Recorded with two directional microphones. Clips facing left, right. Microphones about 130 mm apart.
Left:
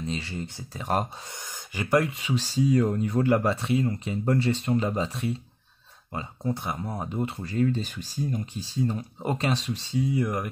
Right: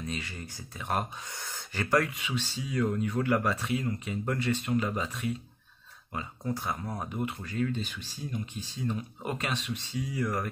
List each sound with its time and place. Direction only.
0.0 s speech: 30° left (ahead or behind)
1.3 s speech: 15° left (ahead or behind)
2.2 s speech: 35° left (ahead or behind)